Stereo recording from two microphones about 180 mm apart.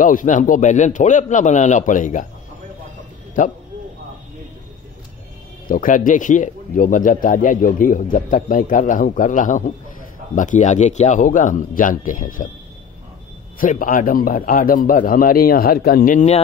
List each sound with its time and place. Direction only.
0.0 s speech: 45° left (ahead or behind)
3.4 s speech: 45° left (ahead or behind)
5.7 s speech: 50° left (ahead or behind)
13.6 s speech: 50° left (ahead or behind)